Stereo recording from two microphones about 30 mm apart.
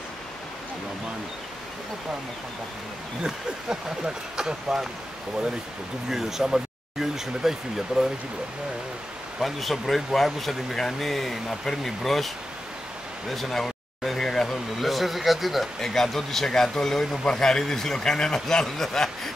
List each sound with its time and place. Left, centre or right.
3.2 s speech: right
6.0 s speech: centre
9.4 s speech: centre
13.3 s speech: centre
14.5 s speech: centre
15.8 s a man's voice: centre